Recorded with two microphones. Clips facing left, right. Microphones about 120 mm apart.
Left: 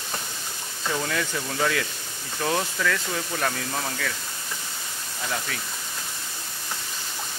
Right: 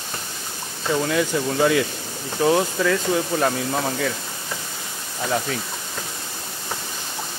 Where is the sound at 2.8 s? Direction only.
25° right (ahead or behind).